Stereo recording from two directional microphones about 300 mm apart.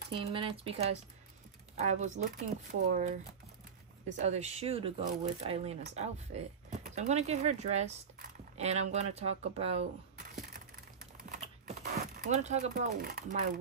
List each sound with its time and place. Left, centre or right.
0.1 s speech: centre
4.3 s speech: right
11.2 s typewriter: right
12.2 s speech: right